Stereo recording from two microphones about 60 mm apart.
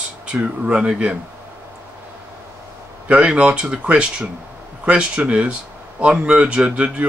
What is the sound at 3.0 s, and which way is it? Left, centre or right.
A man's voice, centre.